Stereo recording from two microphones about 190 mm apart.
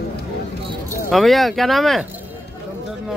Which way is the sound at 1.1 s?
Centre (ahead or behind).